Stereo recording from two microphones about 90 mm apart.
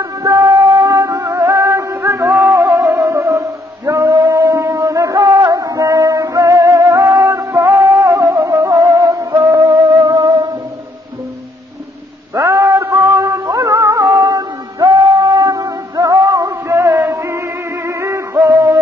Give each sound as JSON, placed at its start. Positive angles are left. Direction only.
{"t": 0.0, "sound": "music", "side_deg": -40}
{"t": 2.6, "sound": "music", "side_deg": -20}
{"t": 3.0, "sound": "music", "side_deg": -35}
{"t": 12.4, "sound": "music", "side_deg": -40}